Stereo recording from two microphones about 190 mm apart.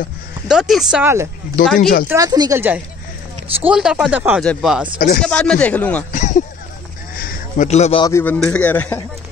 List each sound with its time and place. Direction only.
0.5 s speech: centre (ahead or behind)
1.8 s speech: 50° left (ahead or behind)
2.0 s speech: 20° right (ahead or behind); by 4.8 s centre (ahead or behind)
4.9 s speech: 45° left (ahead or behind)
5.2 s a man's voice: 5° left (ahead or behind)
6.1 s a sound: 40° left (ahead or behind)
8.0 s a man's voice: 15° left (ahead or behind)